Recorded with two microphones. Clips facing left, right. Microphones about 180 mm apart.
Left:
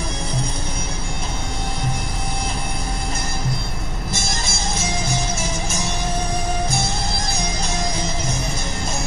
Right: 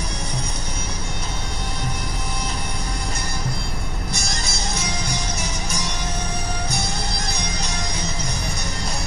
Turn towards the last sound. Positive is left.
turn(degrees=25)  # may be behind; listen again after turning